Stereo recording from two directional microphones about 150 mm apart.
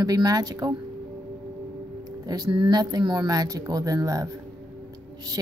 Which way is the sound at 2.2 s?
25° right (ahead or behind).